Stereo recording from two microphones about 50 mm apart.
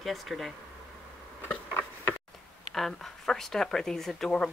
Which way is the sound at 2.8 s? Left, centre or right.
Centre.